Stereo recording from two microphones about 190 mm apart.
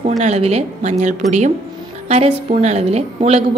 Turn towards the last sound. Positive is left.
turn(degrees=-30)  # may be behind; listen again after turning